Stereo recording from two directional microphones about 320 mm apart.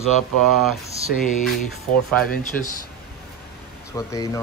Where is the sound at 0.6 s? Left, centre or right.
Centre.